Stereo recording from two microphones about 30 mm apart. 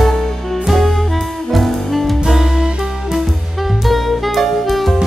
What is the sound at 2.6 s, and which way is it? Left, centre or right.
Music, right.